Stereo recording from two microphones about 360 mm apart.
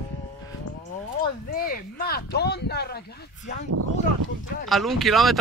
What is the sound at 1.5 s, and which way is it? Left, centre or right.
Speech, left.